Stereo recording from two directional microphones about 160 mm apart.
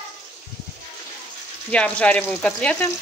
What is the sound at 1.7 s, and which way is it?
Speech, 5° left (ahead or behind).